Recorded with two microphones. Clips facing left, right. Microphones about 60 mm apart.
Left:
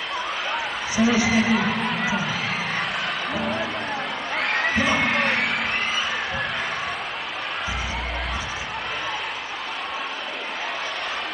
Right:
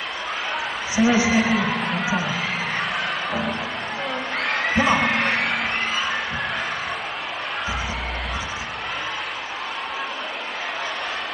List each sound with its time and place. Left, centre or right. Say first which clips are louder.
0.9 s a woman's voice: right 2 dB; right
1.3 s a sound: right 1 dB; centre
4.4 s crowd: right 1 dB; centre